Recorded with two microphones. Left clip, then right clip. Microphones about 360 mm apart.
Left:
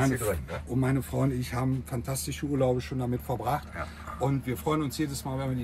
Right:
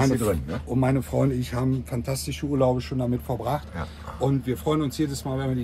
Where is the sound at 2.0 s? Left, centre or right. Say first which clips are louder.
Right 5 dB; centre.